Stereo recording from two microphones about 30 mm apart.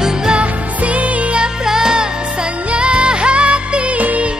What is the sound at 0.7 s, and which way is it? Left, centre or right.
Music, right.